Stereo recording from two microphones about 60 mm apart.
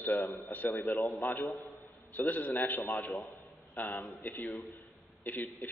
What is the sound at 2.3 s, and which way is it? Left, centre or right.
A man's voice, left.